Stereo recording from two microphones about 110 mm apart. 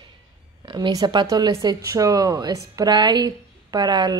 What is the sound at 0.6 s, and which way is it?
A woman's voice, 45° right (ahead or behind).